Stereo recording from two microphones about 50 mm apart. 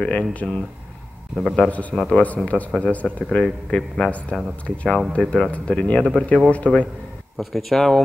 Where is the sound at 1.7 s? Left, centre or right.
Left.